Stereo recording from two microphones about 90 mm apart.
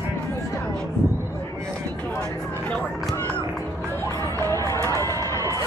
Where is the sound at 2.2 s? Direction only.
10° left (ahead or behind).